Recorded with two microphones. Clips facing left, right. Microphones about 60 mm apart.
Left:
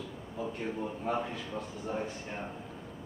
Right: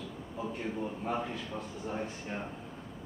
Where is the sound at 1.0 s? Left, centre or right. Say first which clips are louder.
Left 2 dB; centre.